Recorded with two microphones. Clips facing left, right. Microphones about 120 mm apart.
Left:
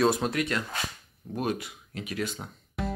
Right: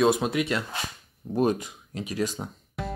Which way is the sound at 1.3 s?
35° right (ahead or behind).